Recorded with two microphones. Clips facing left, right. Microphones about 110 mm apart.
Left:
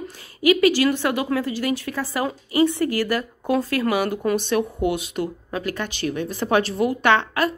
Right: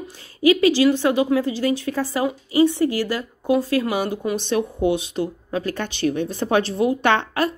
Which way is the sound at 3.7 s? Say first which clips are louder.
Even; 25° right (ahead or behind).